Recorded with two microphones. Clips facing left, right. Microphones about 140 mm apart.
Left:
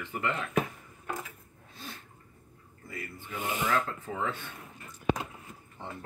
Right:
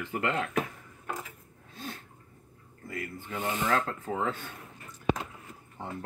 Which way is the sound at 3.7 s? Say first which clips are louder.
Right 2 dB; 40° right (ahead or behind).